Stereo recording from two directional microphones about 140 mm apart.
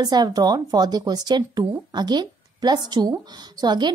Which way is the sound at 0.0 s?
30° right (ahead or behind).